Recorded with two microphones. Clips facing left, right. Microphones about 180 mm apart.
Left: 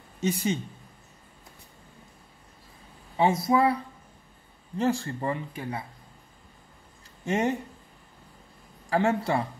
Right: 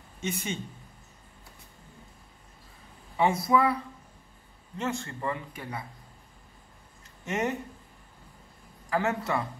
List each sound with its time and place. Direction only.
0.2 s speech: 35° left (ahead or behind)
3.2 s speech: 25° left (ahead or behind)
7.2 s speech: 30° left (ahead or behind)
8.9 s speech: 30° left (ahead or behind)